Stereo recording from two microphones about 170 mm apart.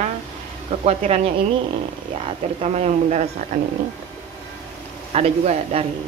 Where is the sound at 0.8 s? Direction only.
40° right (ahead or behind).